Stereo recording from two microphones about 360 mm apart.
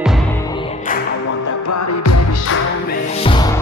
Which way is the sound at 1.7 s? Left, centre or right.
Left.